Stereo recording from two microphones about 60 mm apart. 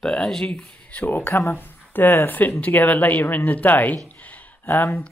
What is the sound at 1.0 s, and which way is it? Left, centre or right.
Speech, left.